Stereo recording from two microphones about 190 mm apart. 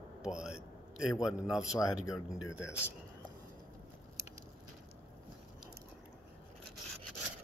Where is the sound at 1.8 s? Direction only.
15° left (ahead or behind).